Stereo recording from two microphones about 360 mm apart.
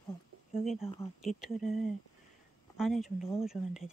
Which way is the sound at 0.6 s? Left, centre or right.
Centre.